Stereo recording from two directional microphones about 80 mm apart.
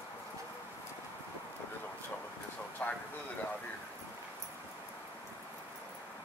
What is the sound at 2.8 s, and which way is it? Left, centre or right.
Vehicle, centre.